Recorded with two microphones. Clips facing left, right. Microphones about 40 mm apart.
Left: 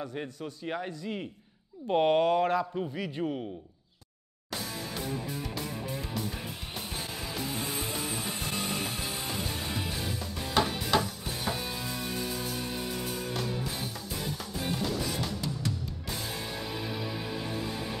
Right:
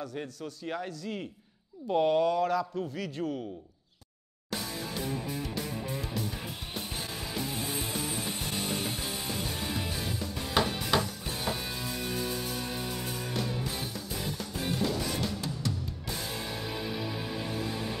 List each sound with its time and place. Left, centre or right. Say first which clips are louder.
0.0 s a man's voice: left 1 dB; centre
1.9 s speech: left 1 dB; left
2.6 s a man's voice: left 1 dB; centre
10.5 s music: left 1 dB; centre
16.6 s music: right 1 dB; centre